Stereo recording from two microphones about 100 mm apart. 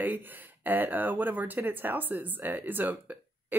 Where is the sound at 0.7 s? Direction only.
20° right (ahead or behind).